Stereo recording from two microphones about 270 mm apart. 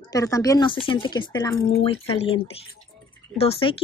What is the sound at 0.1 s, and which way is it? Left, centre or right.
Speech, centre.